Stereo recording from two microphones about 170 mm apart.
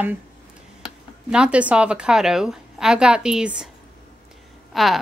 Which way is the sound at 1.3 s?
5° right (ahead or behind).